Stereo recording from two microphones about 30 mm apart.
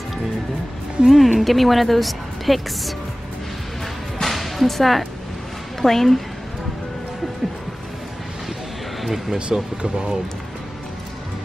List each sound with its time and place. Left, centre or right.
1.0 s a woman's voice: centre
4.2 s music: centre
5.8 s a woman's voice: centre
9.0 s speech: centre
9.5 s speech: right